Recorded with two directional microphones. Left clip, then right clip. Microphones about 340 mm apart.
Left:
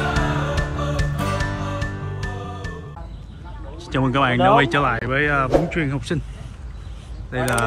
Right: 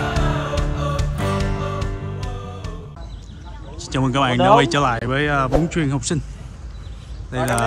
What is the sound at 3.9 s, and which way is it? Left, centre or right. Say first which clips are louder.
Speech: even; centre.